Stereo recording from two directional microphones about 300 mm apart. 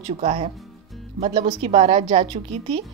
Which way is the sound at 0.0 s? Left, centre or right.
Right.